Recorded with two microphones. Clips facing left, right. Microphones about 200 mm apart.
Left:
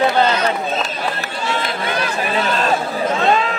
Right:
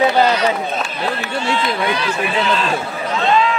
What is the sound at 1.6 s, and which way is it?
Speech, 45° left (ahead or behind).